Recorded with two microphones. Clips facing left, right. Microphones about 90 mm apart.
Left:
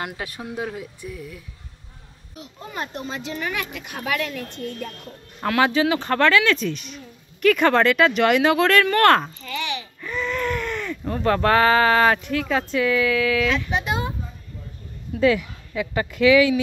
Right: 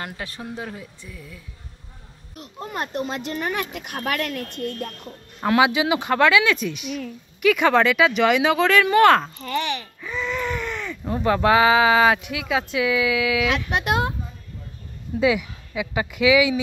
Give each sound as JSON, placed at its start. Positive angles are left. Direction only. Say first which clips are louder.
{"t": 0.0, "sound": "speech", "louder": "left 2 dB", "side_deg": 10}
{"t": 2.3, "sound": "a child's voice", "louder": "right 2 dB", "side_deg": -55}
{"t": 3.7, "sound": "a child's voice", "louder": "even", "side_deg": -50}
{"t": 5.6, "sound": "speech", "louder": "left 1 dB", "side_deg": -10}
{"t": 9.4, "sound": "a child's voice", "louder": "right 4 dB", "side_deg": -45}
{"t": 10.0, "sound": "a sound", "louder": "left 1 dB", "side_deg": 0}
{"t": 11.1, "sound": "speech", "louder": "right 1 dB", "side_deg": -10}
{"t": 13.5, "sound": "speech", "louder": "right 1 dB", "side_deg": -65}
{"t": 15.1, "sound": "speech", "louder": "left 1 dB", "side_deg": -10}